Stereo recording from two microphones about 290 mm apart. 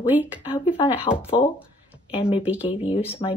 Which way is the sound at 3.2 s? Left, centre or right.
Centre.